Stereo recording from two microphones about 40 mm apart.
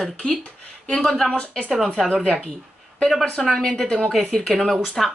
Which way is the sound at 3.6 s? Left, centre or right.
Centre.